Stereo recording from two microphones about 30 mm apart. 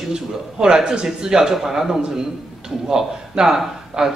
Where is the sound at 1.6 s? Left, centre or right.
Centre.